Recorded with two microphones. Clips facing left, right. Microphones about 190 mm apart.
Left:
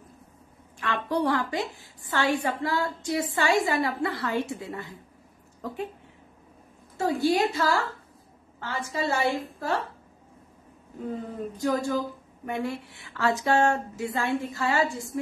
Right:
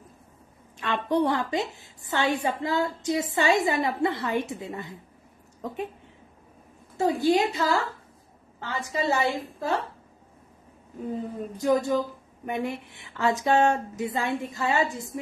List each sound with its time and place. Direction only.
0.7 s a woman's voice: 20° right (ahead or behind)
7.0 s a woman's voice: 20° right (ahead or behind)
11.5 s a woman's voice: 20° right (ahead or behind)